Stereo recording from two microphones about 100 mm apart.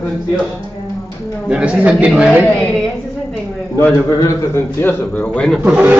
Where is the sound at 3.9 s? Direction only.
30° left (ahead or behind).